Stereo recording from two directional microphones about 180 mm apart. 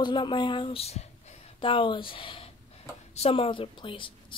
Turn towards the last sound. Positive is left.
turn(degrees=30)  # may be behind; listen again after turning